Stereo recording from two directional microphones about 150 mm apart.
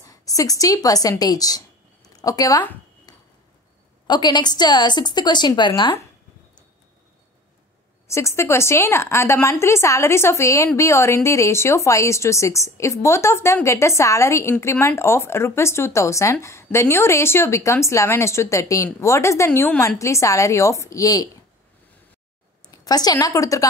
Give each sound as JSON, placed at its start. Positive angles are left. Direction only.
{"t": 0.0, "sound": "a woman's voice", "side_deg": 25}
{"t": 3.1, "sound": "ping", "side_deg": 25}
{"t": 4.1, "sound": "speech", "side_deg": 30}
{"t": 8.1, "sound": "speech", "side_deg": 20}
{"t": 22.7, "sound": "speech", "side_deg": 25}